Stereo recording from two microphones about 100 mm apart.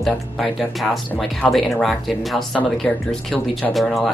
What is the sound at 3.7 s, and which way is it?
Speech, centre (ahead or behind).